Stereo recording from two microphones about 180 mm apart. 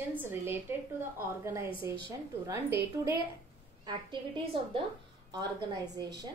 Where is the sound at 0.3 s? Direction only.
10° right (ahead or behind).